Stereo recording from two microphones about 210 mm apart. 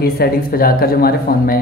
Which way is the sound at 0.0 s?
45° left (ahead or behind).